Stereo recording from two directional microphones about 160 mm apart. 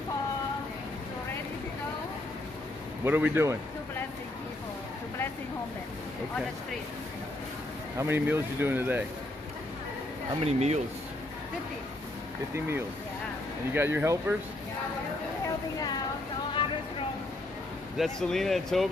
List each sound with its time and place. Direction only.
3.0 s speech: 15° right (ahead or behind)
8.0 s speech: 15° right (ahead or behind)
10.4 s speech: 40° right (ahead or behind)
12.5 s speech: 15° right (ahead or behind)
17.9 s speech: centre (ahead or behind)